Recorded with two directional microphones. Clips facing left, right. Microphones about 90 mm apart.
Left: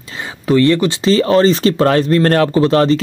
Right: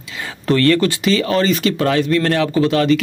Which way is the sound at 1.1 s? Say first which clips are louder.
Left 6 dB; 35° left (ahead or behind).